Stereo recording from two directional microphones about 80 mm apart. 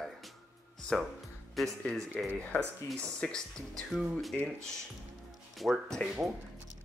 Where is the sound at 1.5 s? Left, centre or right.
Centre.